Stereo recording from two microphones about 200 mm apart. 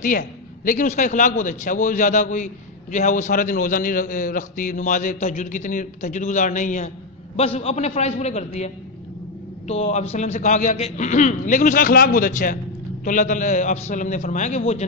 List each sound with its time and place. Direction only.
0.0 s a man's voice: 45° left (ahead or behind)